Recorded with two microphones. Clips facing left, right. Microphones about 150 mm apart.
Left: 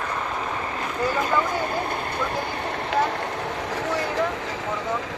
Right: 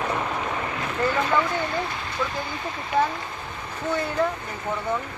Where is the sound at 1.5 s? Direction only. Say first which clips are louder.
Left 1 dB; 50° left (ahead or behind).